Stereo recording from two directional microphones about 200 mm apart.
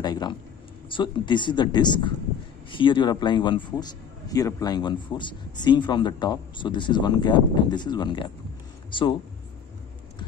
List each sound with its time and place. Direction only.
0.0 s speech: 20° left (ahead or behind)